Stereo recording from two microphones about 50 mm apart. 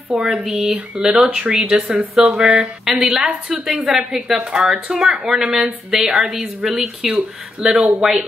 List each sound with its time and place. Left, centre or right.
0.1 s a woman's voice: centre
7.1 s speech: right
7.8 s speech: centre